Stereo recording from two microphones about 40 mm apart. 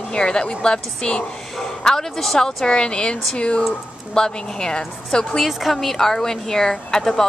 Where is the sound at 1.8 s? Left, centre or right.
Centre.